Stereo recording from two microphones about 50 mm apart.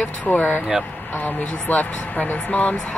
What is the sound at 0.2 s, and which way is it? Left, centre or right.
Speech, left.